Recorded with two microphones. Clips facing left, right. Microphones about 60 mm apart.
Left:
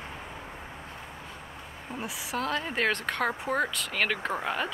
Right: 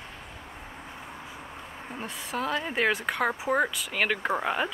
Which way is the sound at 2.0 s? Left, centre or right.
Centre.